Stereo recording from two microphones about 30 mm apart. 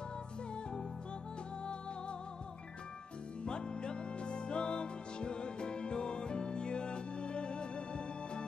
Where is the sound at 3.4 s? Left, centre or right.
Left.